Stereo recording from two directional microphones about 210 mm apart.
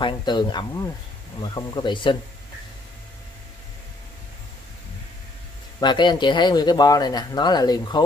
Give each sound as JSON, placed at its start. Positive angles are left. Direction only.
{"t": 0.0, "sound": "speech", "side_deg": 20}
{"t": 5.8, "sound": "speech", "side_deg": 20}